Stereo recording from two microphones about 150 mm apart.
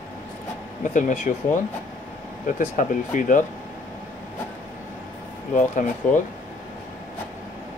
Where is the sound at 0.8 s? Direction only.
55° left (ahead or behind).